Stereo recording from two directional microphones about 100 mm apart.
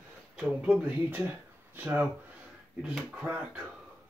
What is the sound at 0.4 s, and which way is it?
Speech, 10° right (ahead or behind).